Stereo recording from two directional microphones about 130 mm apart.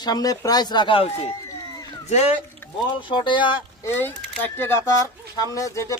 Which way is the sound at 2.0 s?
60° left (ahead or behind).